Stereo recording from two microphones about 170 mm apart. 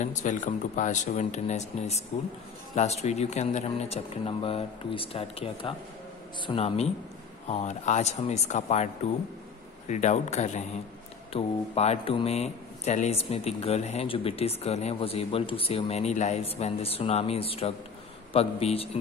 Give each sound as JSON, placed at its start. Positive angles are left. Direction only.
{"t": 0.0, "sound": "speech", "side_deg": 45}
{"t": 9.8, "sound": "speech", "side_deg": 45}